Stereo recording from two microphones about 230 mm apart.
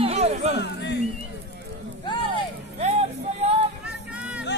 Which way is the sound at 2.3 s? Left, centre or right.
Right.